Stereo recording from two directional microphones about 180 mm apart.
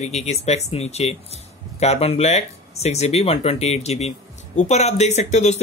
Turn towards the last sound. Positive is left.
turn(degrees=40)  # may be behind; listen again after turning